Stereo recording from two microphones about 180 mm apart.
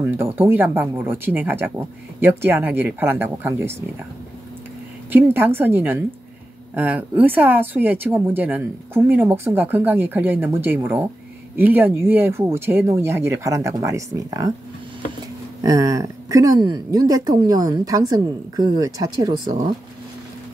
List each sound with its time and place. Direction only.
0.0 s speech: 10° right (ahead or behind)
5.1 s speech: 10° right (ahead or behind)
15.6 s a woman's voice: 20° right (ahead or behind)